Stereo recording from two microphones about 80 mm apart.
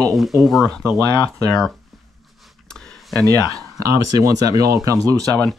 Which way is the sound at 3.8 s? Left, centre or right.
Right.